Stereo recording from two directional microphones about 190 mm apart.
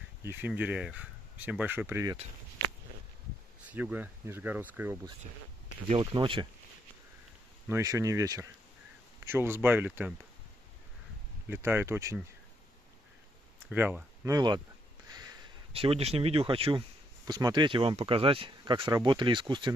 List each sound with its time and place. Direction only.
0.2 s speech: 10° right (ahead or behind)
3.6 s speech: 10° right (ahead or behind)
6.1 s speech: 25° right (ahead or behind)
7.6 s speech: 15° right (ahead or behind)
11.4 s speech: 10° right (ahead or behind)
13.7 s speech: 10° right (ahead or behind)
14.3 s speech: 25° right (ahead or behind)
15.7 s speech: 30° right (ahead or behind)